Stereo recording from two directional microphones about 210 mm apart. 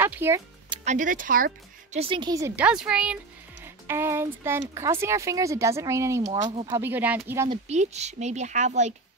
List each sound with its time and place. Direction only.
0.0 s speech: 10° right (ahead or behind)
0.8 s speech: 40° right (ahead or behind)
2.0 s speech: 25° right (ahead or behind)
6.5 s speech: 25° right (ahead or behind)
6.8 s speech: 10° right (ahead or behind)
7.4 s speech: 30° right (ahead or behind)